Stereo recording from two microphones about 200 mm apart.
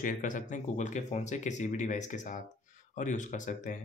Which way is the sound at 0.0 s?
40° left (ahead or behind).